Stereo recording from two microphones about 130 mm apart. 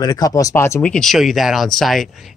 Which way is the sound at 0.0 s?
30° left (ahead or behind).